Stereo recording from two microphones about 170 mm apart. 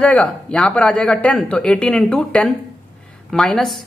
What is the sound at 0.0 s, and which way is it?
A woman's voice, 5° left (ahead or behind).